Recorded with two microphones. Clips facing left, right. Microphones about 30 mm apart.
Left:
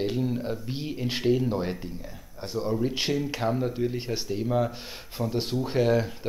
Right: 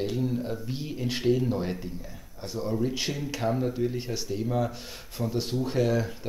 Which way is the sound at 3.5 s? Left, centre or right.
Centre.